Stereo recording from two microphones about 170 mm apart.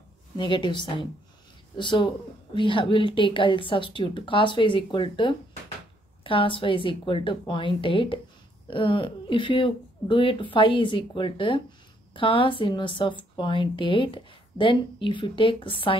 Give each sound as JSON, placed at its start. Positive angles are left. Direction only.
{"t": 0.4, "sound": "speech", "side_deg": 30}